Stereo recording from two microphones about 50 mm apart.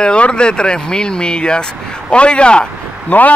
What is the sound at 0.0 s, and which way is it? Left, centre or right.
Speech, centre.